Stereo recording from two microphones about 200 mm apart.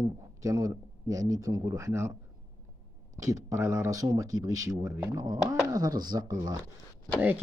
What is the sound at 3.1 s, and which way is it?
Speech, 15° right (ahead or behind).